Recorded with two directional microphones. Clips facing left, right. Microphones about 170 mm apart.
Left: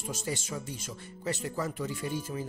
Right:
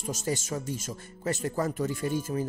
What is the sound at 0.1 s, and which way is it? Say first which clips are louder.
Speech: right 5 dB; 45° right (ahead or behind).